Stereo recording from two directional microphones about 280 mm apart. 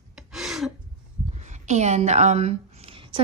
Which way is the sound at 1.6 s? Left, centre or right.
Right.